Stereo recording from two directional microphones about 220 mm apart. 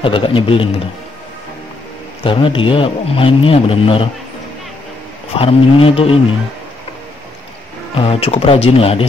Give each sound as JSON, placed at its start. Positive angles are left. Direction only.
{"t": 0.0, "sound": "a man's voice", "side_deg": 25}
{"t": 2.2, "sound": "a man's voice", "side_deg": 25}
{"t": 5.3, "sound": "a man's voice", "side_deg": 25}
{"t": 7.9, "sound": "a man's voice", "side_deg": 25}